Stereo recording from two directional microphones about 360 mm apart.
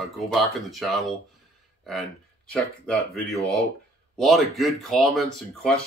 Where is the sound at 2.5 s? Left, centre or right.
Centre.